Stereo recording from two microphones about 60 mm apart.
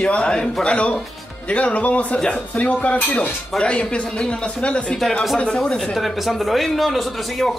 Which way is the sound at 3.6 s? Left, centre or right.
Centre.